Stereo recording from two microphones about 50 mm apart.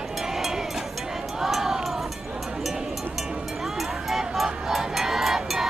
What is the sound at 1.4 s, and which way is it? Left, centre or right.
Music, centre.